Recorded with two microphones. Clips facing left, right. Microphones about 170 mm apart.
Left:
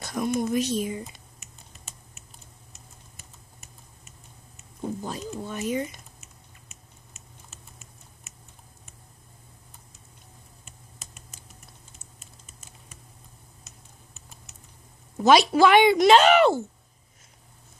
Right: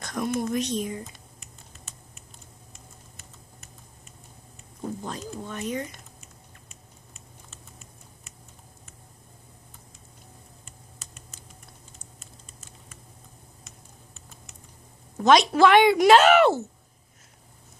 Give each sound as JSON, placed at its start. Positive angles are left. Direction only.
{"t": 0.0, "sound": "speech", "side_deg": 5}
{"t": 4.8, "sound": "speech", "side_deg": 10}
{"t": 6.2, "sound": "a sound", "side_deg": -30}
{"t": 15.1, "sound": "a woman's voice", "side_deg": 5}